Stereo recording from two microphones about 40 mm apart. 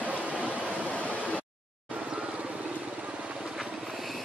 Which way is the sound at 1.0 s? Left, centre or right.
Left.